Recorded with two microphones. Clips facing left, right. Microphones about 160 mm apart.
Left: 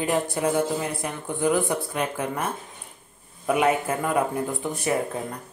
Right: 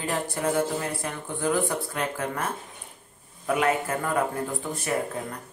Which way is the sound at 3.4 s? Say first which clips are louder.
Left 3 dB; 15° left (ahead or behind).